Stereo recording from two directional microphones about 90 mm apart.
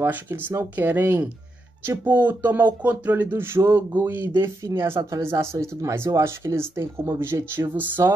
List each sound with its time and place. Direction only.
0.0 s speech: 25° right (ahead or behind)